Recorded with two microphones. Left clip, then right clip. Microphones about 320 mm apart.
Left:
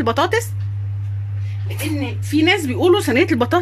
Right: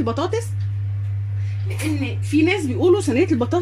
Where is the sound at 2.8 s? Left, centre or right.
Left.